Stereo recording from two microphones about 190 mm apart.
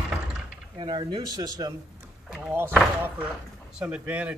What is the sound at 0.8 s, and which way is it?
Speech, 25° right (ahead or behind).